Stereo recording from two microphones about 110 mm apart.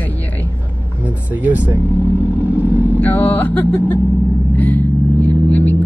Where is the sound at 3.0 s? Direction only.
15° left (ahead or behind).